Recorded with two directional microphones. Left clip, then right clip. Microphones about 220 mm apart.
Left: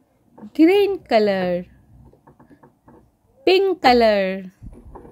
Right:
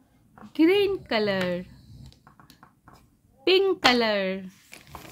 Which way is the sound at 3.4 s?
20° left (ahead or behind).